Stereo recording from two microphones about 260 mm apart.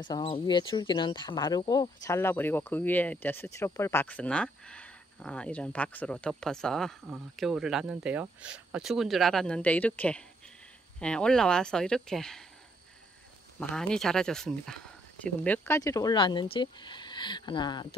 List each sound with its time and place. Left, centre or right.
0.0 s speech: centre
13.6 s speech: centre